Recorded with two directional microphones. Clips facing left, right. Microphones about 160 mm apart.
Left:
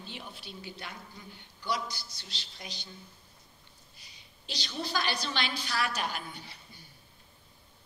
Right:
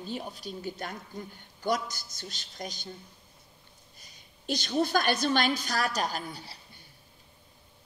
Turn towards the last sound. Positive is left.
turn(degrees=-35)  # may be behind; listen again after turning